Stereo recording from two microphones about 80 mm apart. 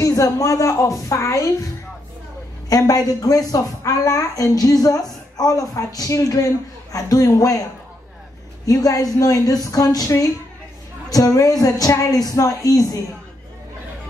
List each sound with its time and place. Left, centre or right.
0.0 s a woman's voice: left
2.7 s a woman's voice: left
8.6 s a woman's voice: left